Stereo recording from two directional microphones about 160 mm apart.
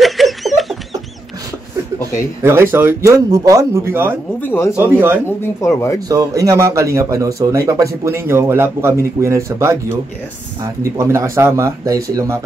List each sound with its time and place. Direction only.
0.0 s a sound: centre (ahead or behind)
2.4 s speech: 15° right (ahead or behind)
4.4 s speech: 15° left (ahead or behind)
4.7 s speech: 10° right (ahead or behind)
5.2 s speech: 15° left (ahead or behind)
5.9 s speech: 20° right (ahead or behind)